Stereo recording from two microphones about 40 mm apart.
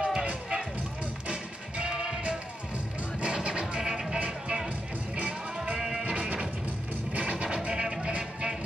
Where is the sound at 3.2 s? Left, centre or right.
Right.